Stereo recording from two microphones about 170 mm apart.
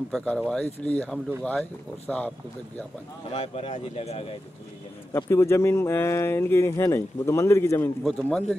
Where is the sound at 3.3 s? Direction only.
35° left (ahead or behind).